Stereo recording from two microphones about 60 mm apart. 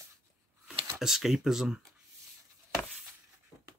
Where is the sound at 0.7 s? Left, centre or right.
Centre.